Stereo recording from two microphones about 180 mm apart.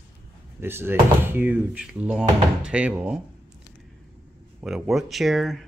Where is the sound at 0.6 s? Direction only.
10° right (ahead or behind).